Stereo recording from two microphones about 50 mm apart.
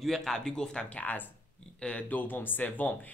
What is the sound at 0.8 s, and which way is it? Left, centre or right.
A man's voice, left.